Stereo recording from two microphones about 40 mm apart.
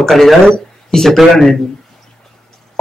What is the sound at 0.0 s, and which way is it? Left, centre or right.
Speech, centre.